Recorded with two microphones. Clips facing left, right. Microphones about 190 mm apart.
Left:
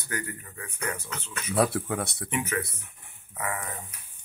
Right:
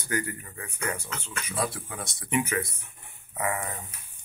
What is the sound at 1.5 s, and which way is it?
Speech, 65° left (ahead or behind).